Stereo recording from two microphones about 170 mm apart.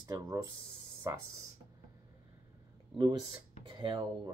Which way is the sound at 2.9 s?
25° right (ahead or behind).